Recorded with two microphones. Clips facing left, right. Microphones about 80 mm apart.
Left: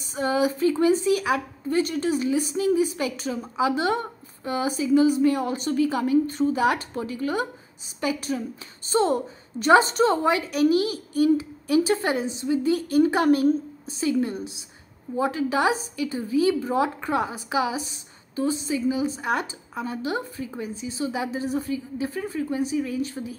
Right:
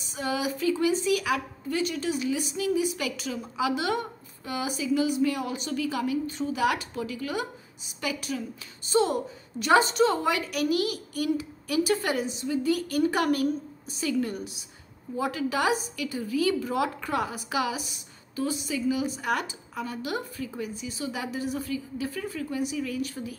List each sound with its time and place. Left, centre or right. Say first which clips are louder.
0.1 s a woman's voice: left 6 dB; left